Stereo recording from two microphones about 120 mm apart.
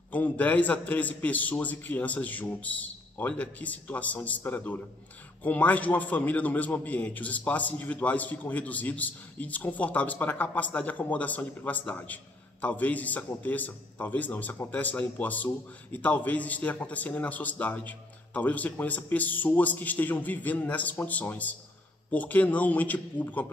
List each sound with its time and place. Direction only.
0.1 s a man's voice: 15° left (ahead or behind)